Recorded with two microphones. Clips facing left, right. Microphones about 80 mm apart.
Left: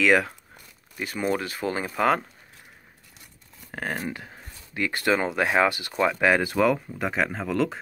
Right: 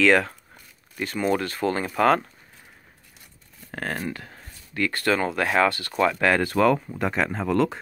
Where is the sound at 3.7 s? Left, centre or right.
Centre.